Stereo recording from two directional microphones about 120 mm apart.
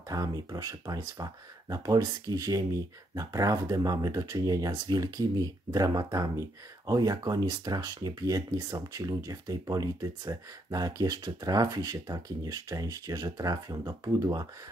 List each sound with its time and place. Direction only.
0.1 s speech: 30° right (ahead or behind)